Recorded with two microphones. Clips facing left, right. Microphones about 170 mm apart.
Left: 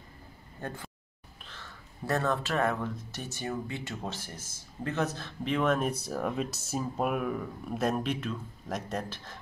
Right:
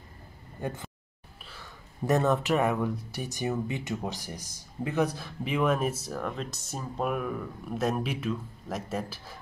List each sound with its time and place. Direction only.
0.6 s speech: 15° right (ahead or behind)
1.4 s a sound: 10° right (ahead or behind)
3.1 s speech: 15° right (ahead or behind)